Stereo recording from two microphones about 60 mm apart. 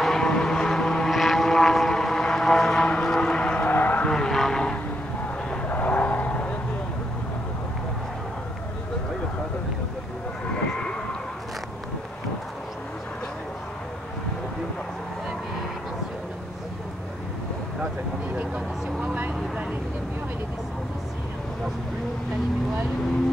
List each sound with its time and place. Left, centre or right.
0.0 s vehicle: centre
3.6 s vehicle: left
4.1 s vehicle: centre
5.5 s vehicle: left
18.9 s vehicle: right